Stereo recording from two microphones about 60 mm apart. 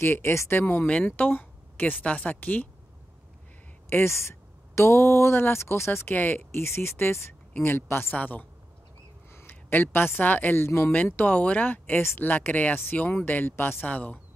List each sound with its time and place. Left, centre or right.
0.0 s a woman's voice: left
0.6 s a woman's voice: left
3.9 s speech: left
6.1 s speech: left
6.5 s a woman's voice: left
8.2 s speech: left
9.3 s a woman's voice: left
10.6 s speech: left
11.1 s speech: left
12.0 s speech: left
12.3 s a woman's voice: left
13.8 s speech: left